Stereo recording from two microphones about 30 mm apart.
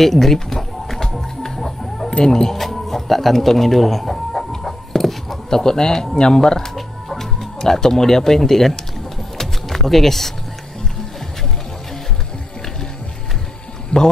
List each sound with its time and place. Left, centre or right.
0.0 s a sound: centre
2.2 s speech: centre
2.5 s speech: centre
4.1 s chicken: centre
4.5 s a sound: centre
5.5 s speech: centre
6.7 s music: centre
7.3 s speech: centre
9.4 s music: centre
13.9 s speech: left